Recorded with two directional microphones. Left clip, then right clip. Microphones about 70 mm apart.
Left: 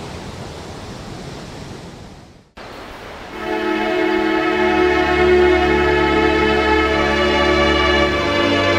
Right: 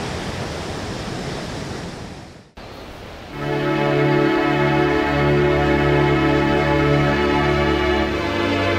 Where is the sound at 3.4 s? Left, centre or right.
Left.